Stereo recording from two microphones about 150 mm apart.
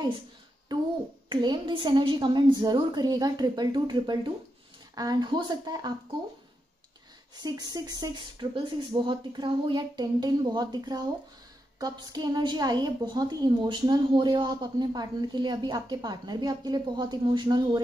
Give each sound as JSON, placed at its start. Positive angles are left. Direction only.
{"t": 0.7, "sound": "a woman's voice", "side_deg": -30}
{"t": 7.4, "sound": "a woman's voice", "side_deg": -25}